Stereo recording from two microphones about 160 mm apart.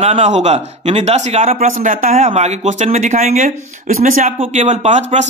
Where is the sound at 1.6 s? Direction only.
55° right (ahead or behind).